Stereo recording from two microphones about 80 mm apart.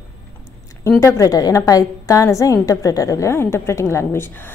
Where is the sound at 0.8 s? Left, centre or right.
Left.